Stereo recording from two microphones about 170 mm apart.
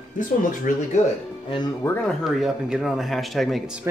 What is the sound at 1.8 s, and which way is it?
Speech, 5° left (ahead or behind).